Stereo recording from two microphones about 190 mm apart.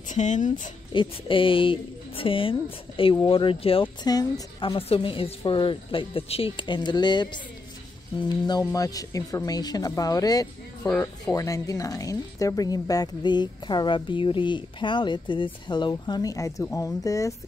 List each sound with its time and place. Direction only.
0.1 s speech: 40° left (ahead or behind)
0.9 s a woman's voice: 25° left (ahead or behind)
8.5 s a woman's voice: 20° left (ahead or behind)
10.9 s speech: 5° left (ahead or behind)
11.3 s a woman's voice: 15° left (ahead or behind)